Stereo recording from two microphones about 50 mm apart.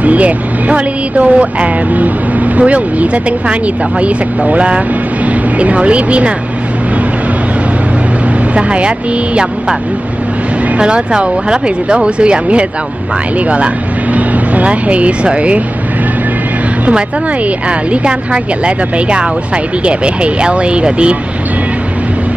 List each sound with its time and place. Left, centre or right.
0.0 s speech: right
8.5 s speech: right
10.8 s speech: centre
14.1 s speech: right
17.6 s speech: right